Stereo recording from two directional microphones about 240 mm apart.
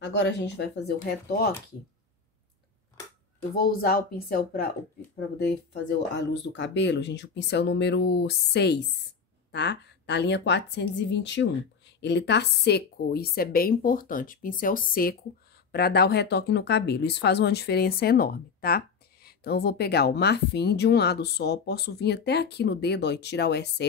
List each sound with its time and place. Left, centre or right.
0.0 s speech: left
3.5 s a woman's voice: left